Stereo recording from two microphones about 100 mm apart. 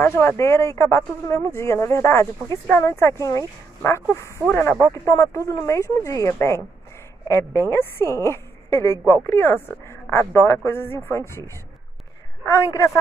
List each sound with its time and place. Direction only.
0.0 s a woman's voice: 25° left (ahead or behind)